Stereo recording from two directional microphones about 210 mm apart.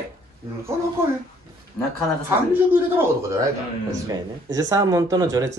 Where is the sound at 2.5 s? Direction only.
10° right (ahead or behind).